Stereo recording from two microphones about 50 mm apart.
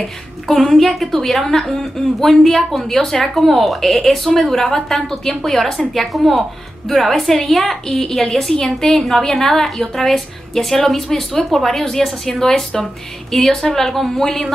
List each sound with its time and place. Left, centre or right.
0.5 s a woman's voice: centre